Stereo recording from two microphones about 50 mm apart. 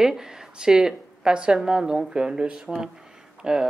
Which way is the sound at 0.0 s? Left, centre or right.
Centre.